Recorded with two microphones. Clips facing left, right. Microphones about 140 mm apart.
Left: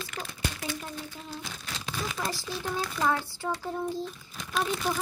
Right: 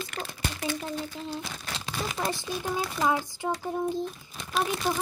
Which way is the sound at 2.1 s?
20° right (ahead or behind).